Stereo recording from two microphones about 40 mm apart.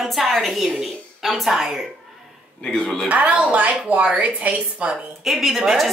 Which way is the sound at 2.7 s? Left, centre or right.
Centre.